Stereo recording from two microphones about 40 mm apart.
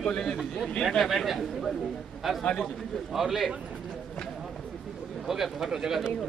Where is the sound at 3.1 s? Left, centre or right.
Centre.